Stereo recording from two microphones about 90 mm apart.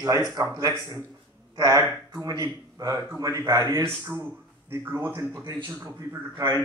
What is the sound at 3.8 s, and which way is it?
Speech, 25° right (ahead or behind).